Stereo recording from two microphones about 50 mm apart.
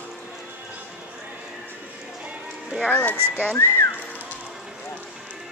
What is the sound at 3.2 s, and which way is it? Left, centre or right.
Whistling, right.